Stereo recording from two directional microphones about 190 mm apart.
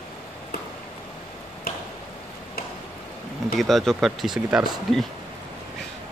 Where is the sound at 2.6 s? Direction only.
50° left (ahead or behind).